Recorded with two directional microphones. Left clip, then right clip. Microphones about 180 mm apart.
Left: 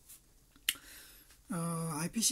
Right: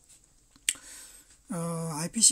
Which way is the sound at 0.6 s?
35° right (ahead or behind).